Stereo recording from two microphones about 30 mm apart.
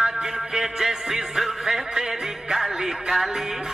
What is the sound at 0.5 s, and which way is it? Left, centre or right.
Music, centre.